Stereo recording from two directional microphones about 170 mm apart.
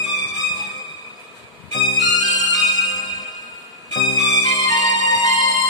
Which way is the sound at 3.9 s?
20° left (ahead or behind).